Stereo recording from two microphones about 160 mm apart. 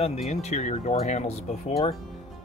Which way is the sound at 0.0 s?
40° left (ahead or behind).